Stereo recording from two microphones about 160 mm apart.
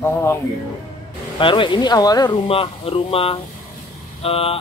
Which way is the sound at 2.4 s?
35° left (ahead or behind).